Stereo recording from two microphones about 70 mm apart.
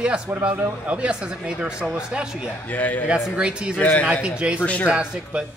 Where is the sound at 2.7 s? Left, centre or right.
Left.